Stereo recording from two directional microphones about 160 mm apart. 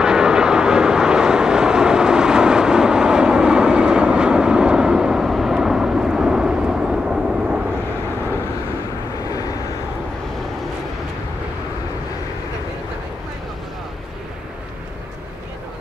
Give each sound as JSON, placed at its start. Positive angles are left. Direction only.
{"t": 0.0, "sound": "vehicle", "side_deg": -5}
{"t": 9.2, "sound": "vehicle", "side_deg": 20}